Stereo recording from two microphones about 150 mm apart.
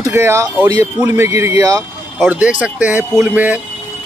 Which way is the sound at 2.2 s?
10° right (ahead or behind).